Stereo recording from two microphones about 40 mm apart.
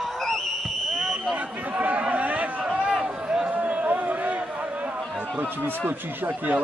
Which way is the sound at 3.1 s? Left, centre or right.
Right.